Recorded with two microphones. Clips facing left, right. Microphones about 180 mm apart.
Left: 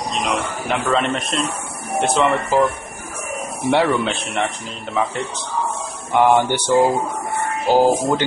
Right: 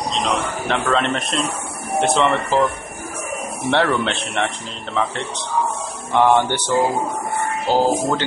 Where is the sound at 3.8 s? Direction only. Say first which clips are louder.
Left 1 dB; centre (ahead or behind).